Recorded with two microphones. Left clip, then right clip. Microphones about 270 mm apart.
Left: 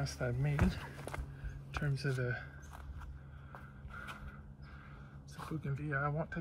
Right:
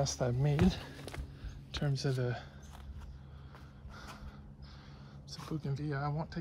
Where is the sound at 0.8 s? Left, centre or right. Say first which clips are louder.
Left 1 dB; centre.